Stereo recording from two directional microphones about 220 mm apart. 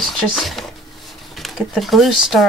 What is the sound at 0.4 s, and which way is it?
Speech, centre (ahead or behind).